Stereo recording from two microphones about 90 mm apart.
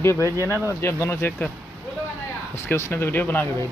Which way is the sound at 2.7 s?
30° left (ahead or behind).